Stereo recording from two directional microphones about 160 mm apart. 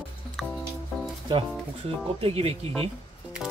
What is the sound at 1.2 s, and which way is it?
Speech, 35° right (ahead or behind).